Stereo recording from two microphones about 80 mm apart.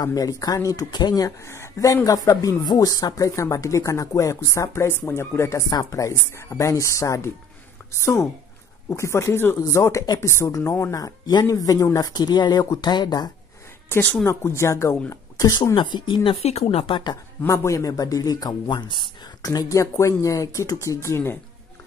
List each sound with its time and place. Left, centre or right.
0.0 s a man's voice: left
1.4 s a man's voice: left
12.1 s speech: left
13.8 s speech: left
14.2 s speech: left
15.3 s speech: left
15.7 s speech: left
17.5 s a man's voice: left
18.7 s speech: left
19.4 s speech: left